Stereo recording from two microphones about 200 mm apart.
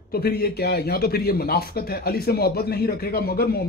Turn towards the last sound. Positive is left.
turn(degrees=50)  # may be behind; listen again after turning